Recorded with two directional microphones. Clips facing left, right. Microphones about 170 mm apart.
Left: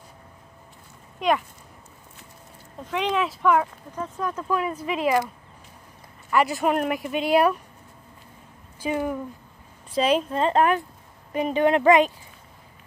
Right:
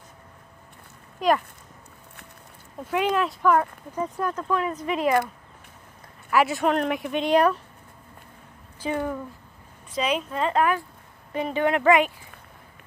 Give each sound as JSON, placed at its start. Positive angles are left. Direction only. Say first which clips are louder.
{"t": 2.9, "sound": "speech", "louder": "right 1 dB", "side_deg": -5}
{"t": 3.9, "sound": "speech", "louder": "right 3 dB", "side_deg": -10}
{"t": 4.3, "sound": "speech", "louder": "even", "side_deg": 10}
{"t": 6.3, "sound": "speech", "louder": "even", "side_deg": 0}
{"t": 8.8, "sound": "speech", "louder": "left 1 dB", "side_deg": 15}
{"t": 9.9, "sound": "a woman's voice", "louder": "left 4 dB", "side_deg": 35}